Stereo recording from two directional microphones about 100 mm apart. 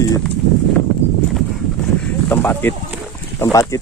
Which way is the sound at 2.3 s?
20° left (ahead or behind).